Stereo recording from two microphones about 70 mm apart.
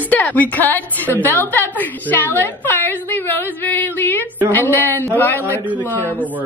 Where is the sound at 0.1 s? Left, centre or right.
Left.